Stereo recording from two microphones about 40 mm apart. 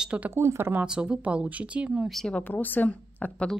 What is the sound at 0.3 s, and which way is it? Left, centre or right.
Speech, right.